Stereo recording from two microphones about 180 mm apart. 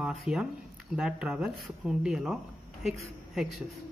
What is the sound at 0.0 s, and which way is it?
Speech, centre (ahead or behind).